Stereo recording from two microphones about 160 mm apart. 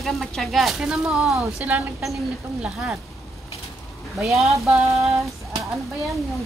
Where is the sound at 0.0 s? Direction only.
Centre (ahead or behind).